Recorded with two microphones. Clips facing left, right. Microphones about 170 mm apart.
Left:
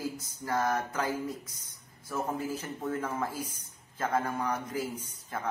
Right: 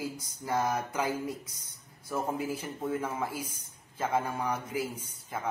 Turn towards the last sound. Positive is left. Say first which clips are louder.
# even
turn(degrees=-10)  # may be behind; listen again after turning